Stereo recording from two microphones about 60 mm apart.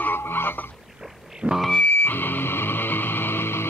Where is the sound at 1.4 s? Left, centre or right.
Centre.